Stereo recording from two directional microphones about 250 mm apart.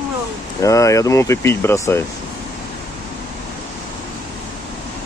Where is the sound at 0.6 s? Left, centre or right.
Centre.